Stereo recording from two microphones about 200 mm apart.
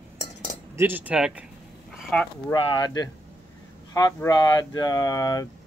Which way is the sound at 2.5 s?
20° left (ahead or behind).